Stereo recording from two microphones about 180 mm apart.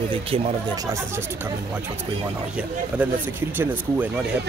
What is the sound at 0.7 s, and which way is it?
Speech, 15° right (ahead or behind).